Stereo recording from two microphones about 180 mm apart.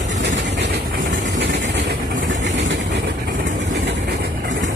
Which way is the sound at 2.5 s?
90° right.